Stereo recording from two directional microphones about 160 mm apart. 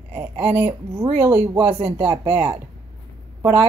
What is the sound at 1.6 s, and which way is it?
Speech, 40° right (ahead or behind).